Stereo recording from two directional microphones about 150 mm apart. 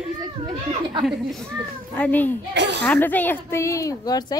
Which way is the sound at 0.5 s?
30° right (ahead or behind).